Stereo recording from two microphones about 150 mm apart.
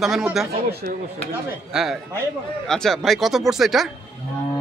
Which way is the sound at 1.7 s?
Centre (ahead or behind).